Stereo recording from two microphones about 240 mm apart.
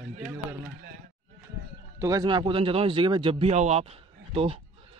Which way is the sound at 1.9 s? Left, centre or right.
Centre.